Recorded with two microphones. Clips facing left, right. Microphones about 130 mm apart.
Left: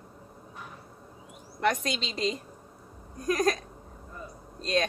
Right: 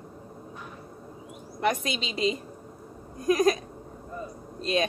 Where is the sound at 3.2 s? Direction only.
5° right (ahead or behind).